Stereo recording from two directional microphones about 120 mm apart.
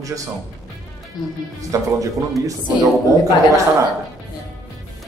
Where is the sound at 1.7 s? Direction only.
25° right (ahead or behind).